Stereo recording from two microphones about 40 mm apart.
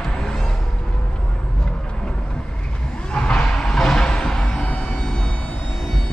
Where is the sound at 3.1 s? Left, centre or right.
Left.